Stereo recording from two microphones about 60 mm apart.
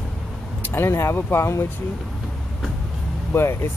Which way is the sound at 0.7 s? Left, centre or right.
Left.